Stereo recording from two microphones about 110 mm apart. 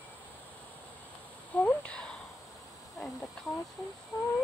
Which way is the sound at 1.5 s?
10° left (ahead or behind).